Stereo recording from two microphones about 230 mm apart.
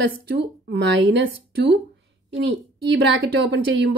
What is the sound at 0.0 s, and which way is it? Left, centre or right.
A woman's voice, right.